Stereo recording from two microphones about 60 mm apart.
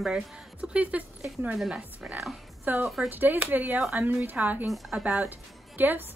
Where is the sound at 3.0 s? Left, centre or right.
Right.